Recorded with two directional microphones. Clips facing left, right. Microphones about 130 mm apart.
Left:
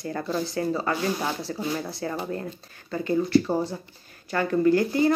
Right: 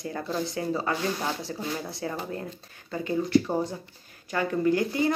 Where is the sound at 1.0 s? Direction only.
10° left (ahead or behind).